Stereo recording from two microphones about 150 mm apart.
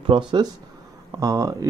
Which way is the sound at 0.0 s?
35° right (ahead or behind).